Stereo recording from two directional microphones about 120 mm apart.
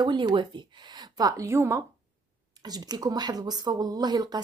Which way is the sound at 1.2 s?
30° right (ahead or behind).